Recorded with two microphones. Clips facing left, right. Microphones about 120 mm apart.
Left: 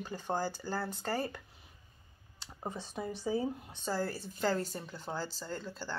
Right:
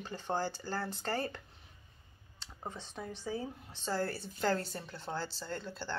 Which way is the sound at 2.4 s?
10° left (ahead or behind).